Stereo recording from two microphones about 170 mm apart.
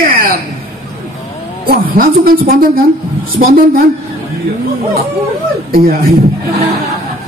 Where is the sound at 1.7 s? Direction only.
60° right (ahead or behind).